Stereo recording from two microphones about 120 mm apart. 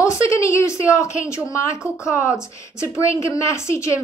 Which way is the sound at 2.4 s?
25° left (ahead or behind).